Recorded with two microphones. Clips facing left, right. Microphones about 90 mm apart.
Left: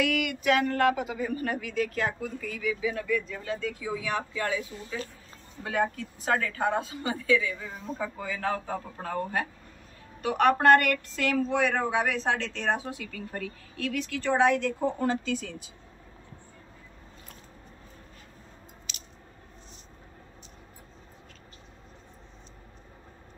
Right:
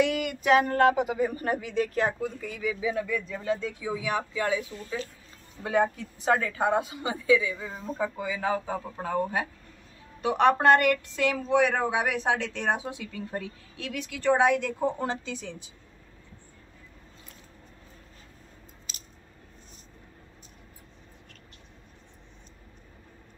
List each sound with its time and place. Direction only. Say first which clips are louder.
0.0 s a sound: right 1 dB; 35° right (ahead or behind)
1.3 s speech: right 2 dB; 30° right (ahead or behind); by 9.5 s 10° right (ahead or behind)
10.2 s speech: right 1 dB; 20° right (ahead or behind)